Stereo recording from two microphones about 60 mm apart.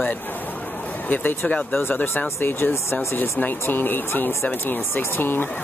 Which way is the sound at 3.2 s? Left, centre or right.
Left.